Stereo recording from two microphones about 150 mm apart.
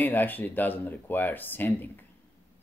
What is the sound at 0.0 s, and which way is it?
Speech, 10° left (ahead or behind).